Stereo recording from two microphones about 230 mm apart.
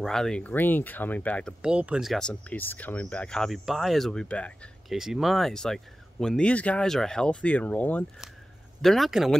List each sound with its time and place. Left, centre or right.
0.0 s speech: centre